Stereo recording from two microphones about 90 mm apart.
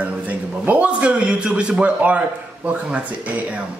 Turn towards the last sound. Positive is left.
turn(degrees=-15)  # may be behind; listen again after turning